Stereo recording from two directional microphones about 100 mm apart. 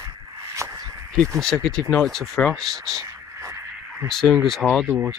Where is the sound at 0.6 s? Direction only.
30° right (ahead or behind).